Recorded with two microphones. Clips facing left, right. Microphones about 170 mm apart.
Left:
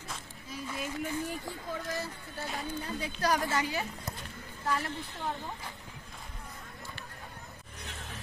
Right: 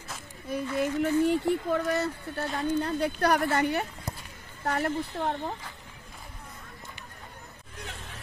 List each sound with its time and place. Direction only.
0.5 s speech: 60° right (ahead or behind)
1.2 s speech: 70° right (ahead or behind)